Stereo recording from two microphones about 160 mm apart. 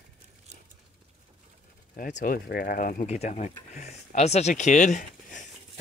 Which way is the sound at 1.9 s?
60° left (ahead or behind).